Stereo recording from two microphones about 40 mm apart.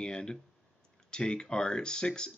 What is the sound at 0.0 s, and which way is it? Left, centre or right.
Speech, centre.